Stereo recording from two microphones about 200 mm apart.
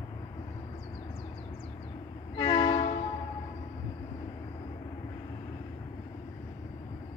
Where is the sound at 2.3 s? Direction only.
20° left (ahead or behind).